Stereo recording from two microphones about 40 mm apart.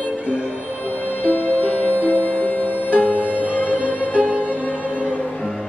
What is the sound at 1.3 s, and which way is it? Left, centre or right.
Music, left.